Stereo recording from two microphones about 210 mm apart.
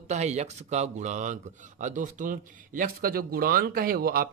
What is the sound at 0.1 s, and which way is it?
A man's voice, 35° right (ahead or behind).